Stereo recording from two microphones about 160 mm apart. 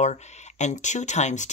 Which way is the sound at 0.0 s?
45° left (ahead or behind).